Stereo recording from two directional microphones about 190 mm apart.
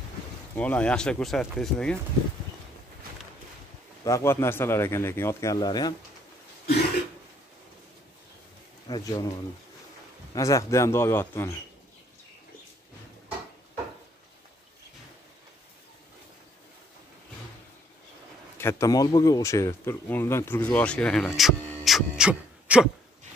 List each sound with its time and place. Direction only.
0.6 s speech: 5° left (ahead or behind)
4.0 s speech: 15° left (ahead or behind)
8.8 s speech: 20° left (ahead or behind)
10.3 s speech: 15° left (ahead or behind)
18.6 s speech: 15° left (ahead or behind)
21.6 s music: centre (ahead or behind)